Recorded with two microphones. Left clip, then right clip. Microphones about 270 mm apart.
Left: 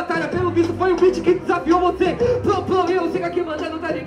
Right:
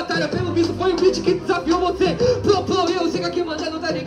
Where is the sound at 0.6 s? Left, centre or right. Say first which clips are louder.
Left 1 dB; right.